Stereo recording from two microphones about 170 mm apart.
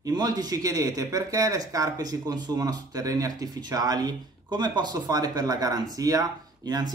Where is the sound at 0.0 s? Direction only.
25° right (ahead or behind).